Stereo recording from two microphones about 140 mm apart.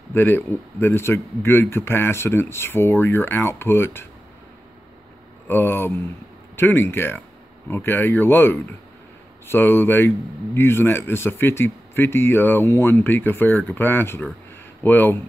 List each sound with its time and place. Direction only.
0.1 s a man's voice: 15° left (ahead or behind)
5.5 s a man's voice: 15° left (ahead or behind)